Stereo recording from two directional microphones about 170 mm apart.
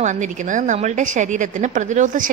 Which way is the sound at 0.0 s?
45° right (ahead or behind).